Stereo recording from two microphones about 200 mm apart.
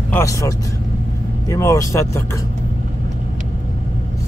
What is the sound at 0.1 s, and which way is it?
Speech, 15° left (ahead or behind).